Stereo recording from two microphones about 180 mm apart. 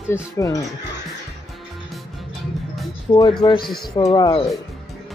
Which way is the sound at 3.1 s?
30° left (ahead or behind).